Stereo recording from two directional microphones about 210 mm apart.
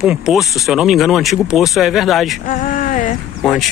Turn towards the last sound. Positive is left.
turn(degrees=0)  # may be behind; listen again after turning